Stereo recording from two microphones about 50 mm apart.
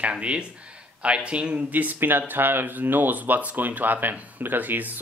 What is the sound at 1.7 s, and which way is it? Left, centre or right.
Speech, right.